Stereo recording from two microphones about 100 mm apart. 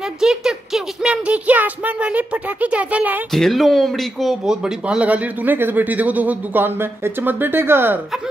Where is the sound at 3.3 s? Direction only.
Centre (ahead or behind); by 8.0 s 25° right (ahead or behind).